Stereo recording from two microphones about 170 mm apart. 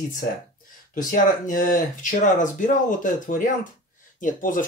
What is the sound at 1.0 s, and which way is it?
Speech, 55° left (ahead or behind).